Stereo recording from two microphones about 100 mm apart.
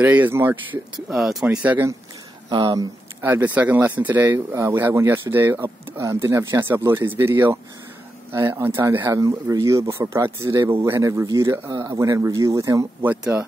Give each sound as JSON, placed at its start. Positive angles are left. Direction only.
{"t": 0.0, "sound": "speech", "side_deg": -15}
{"t": 1.1, "sound": "speech", "side_deg": -5}
{"t": 2.5, "sound": "speech", "side_deg": -45}
{"t": 3.2, "sound": "a man's voice", "side_deg": -20}